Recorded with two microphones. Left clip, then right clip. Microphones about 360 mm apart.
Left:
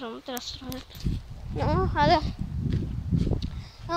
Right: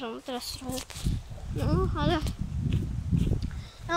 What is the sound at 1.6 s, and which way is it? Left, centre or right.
Speech, centre.